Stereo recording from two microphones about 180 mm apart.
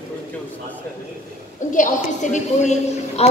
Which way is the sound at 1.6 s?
45° left (ahead or behind).